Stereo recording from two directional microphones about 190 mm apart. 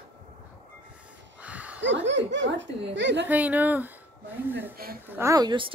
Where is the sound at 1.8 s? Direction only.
70° right (ahead or behind).